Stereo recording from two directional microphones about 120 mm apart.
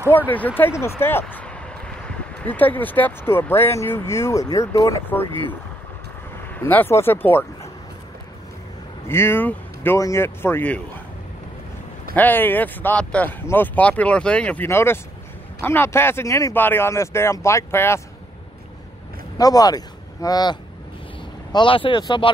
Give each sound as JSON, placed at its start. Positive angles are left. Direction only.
{"t": 0.1, "sound": "speech", "side_deg": 15}
{"t": 6.5, "sound": "speech", "side_deg": 15}
{"t": 9.0, "sound": "speech", "side_deg": 20}
{"t": 12.2, "sound": "speech", "side_deg": 15}
{"t": 19.3, "sound": "speech", "side_deg": 30}
{"t": 21.5, "sound": "speech", "side_deg": 45}